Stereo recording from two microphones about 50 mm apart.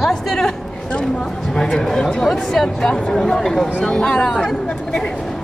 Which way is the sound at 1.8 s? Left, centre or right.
Centre.